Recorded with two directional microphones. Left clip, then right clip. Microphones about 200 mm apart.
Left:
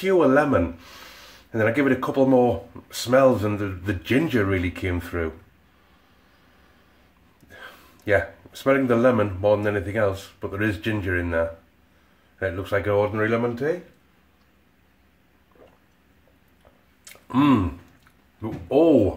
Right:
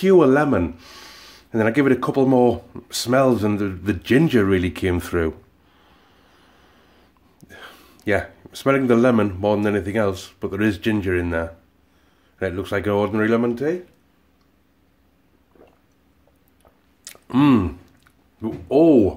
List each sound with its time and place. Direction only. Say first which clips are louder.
0.0 s speech: right 4 dB; 40° right (ahead or behind)
7.4 s speech: right 2 dB; 40° right (ahead or behind)
17.0 s a sound: right 3 dB; 40° right (ahead or behind)
18.4 s speech: right 3 dB; 40° right (ahead or behind)